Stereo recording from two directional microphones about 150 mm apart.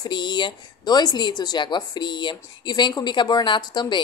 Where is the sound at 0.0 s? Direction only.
30° left (ahead or behind).